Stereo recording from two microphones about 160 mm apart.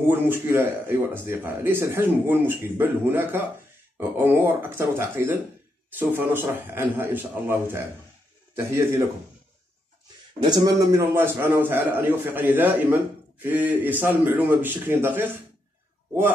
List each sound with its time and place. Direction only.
0.1 s a man's voice: 15° right (ahead or behind)
10.4 s a man's voice: 25° right (ahead or behind)